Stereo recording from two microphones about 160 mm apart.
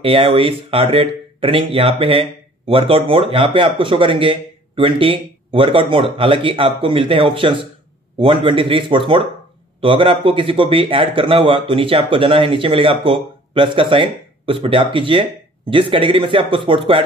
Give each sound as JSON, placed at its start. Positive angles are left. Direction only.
{"t": 0.0, "sound": "a man's voice", "side_deg": -35}